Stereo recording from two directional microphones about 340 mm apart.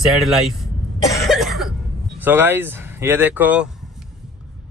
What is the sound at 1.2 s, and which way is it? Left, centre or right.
Cough, centre.